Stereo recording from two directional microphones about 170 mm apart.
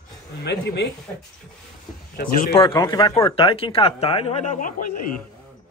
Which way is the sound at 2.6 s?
25° left (ahead or behind).